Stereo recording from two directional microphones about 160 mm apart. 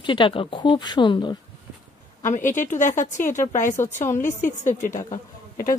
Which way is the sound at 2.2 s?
50° left (ahead or behind).